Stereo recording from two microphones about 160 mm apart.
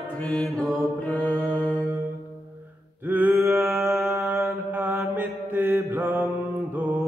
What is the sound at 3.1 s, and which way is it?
Mantra, 15° right (ahead or behind).